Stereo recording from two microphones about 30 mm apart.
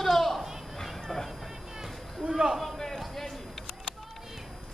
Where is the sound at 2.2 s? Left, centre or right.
Right.